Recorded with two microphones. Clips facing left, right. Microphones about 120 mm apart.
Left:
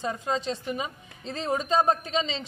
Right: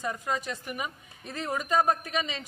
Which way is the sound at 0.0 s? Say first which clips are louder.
Left 3 dB; 25° left (ahead or behind).